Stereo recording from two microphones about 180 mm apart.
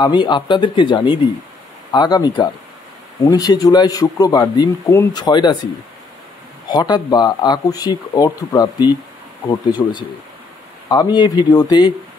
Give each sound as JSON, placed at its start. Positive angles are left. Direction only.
{"t": 0.0, "sound": "speech", "side_deg": 25}
{"t": 6.7, "sound": "speech", "side_deg": 25}